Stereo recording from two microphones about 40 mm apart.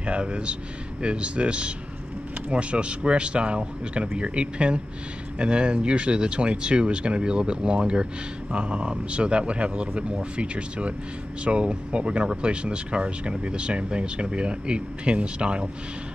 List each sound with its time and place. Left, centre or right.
0.0 s speech: right